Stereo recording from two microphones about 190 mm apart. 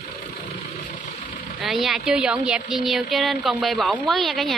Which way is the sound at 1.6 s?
Centre (ahead or behind).